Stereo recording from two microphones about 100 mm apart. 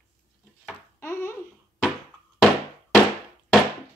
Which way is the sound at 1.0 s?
25° left (ahead or behind).